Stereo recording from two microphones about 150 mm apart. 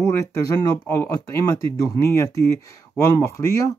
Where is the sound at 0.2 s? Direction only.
20° left (ahead or behind).